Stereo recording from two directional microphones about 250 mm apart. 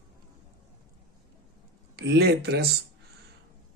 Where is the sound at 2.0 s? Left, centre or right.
Right.